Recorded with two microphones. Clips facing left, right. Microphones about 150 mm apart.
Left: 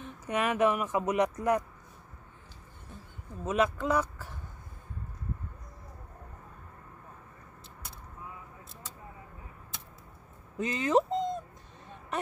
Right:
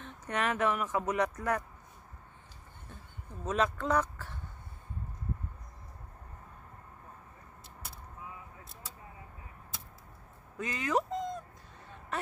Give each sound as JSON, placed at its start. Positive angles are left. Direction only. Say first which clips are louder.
{"t": 0.0, "sound": "speech", "louder": "left 3 dB", "side_deg": 10}
{"t": 3.4, "sound": "speech", "louder": "left 3 dB", "side_deg": 10}
{"t": 10.6, "sound": "dog", "louder": "left 5 dB", "side_deg": 25}
{"t": 12.1, "sound": "a sound", "louder": "left 3 dB", "side_deg": 15}